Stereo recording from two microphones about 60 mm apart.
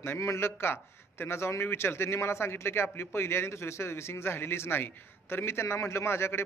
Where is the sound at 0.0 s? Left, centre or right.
Left.